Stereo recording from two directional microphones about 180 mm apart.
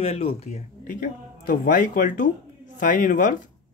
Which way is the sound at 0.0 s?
35° left (ahead or behind).